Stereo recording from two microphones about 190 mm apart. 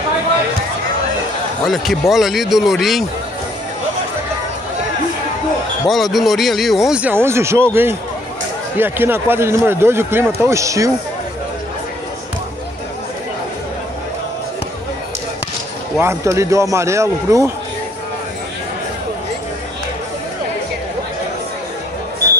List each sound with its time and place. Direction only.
1.7 s speech: centre (ahead or behind)
5.9 s speech: centre (ahead or behind); by 10.9 s 15° right (ahead or behind)
16.0 s speech: 15° right (ahead or behind)